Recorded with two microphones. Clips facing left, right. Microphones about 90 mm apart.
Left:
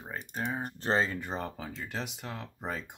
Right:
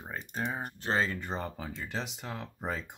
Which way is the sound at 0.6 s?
35° left (ahead or behind).